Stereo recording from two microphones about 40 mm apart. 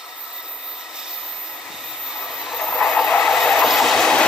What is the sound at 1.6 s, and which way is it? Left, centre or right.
Train, centre.